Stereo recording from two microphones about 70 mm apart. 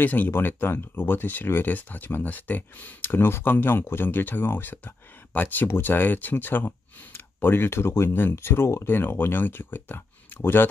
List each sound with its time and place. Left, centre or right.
0.0 s speech: left